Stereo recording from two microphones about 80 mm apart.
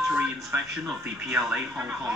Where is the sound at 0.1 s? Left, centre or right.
Centre.